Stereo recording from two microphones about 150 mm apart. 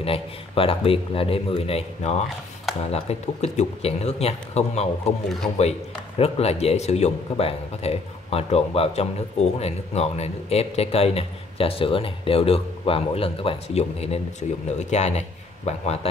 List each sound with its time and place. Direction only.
0.0 s a man's voice: 40° left (ahead or behind)